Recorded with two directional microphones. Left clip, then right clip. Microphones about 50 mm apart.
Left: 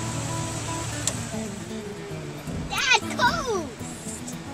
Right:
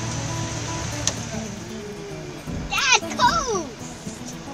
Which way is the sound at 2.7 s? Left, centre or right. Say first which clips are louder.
Right 2 dB; right.